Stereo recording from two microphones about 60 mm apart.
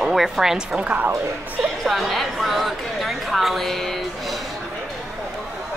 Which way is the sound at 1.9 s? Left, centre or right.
Centre.